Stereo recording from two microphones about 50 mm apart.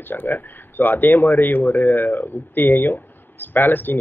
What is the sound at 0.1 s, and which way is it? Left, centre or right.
Speech, left.